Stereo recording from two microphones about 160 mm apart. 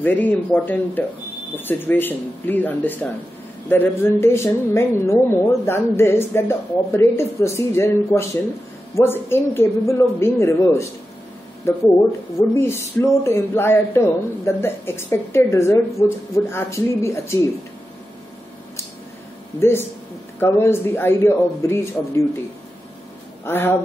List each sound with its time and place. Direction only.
0.0 s speech: 10° left (ahead or behind)
19.6 s speech: 15° left (ahead or behind)
23.4 s speech: 15° left (ahead or behind)